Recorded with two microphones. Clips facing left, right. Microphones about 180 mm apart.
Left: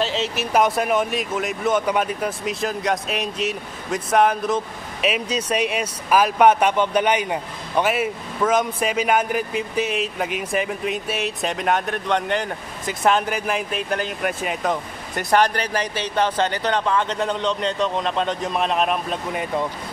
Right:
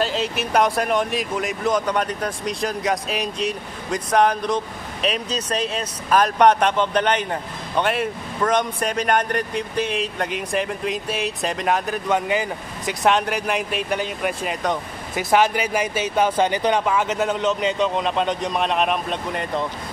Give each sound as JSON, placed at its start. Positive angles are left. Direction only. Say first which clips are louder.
{"t": 0.0, "sound": "speech", "louder": "even", "side_deg": 0}